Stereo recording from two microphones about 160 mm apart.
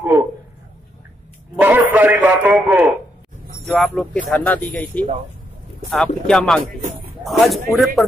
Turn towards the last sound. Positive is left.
turn(degrees=0)  # may be behind; listen again after turning